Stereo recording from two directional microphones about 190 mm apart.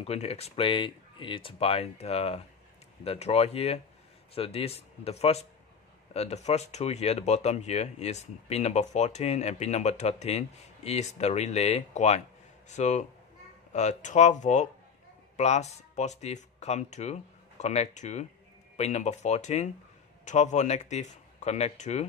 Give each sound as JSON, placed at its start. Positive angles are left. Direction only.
{"t": 0.0, "sound": "speech", "side_deg": 35}